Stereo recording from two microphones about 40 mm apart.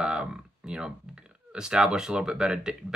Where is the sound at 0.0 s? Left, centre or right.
Right.